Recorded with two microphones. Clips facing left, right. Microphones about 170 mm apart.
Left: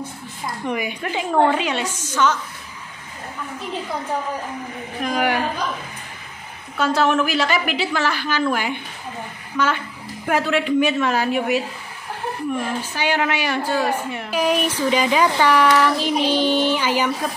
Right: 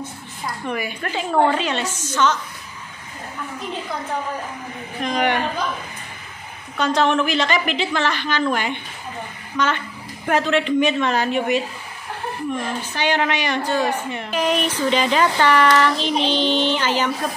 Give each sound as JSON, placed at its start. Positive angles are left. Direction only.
{"t": 0.7, "sound": "a woman's voice", "side_deg": 15}
{"t": 5.0, "sound": "a woman's voice", "side_deg": 5}
{"t": 6.8, "sound": "a woman's voice", "side_deg": 5}